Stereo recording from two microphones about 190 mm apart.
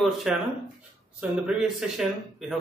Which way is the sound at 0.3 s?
5° right (ahead or behind).